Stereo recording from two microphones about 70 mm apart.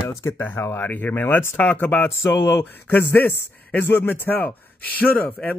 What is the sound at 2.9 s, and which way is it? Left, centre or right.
A man's voice, left.